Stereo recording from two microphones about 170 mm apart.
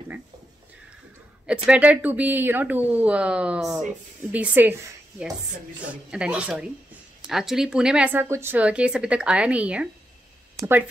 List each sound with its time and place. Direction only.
1.5 s speech: 5° right (ahead or behind)
6.0 s speech: 5° right (ahead or behind)
10.5 s a sound: 15° right (ahead or behind)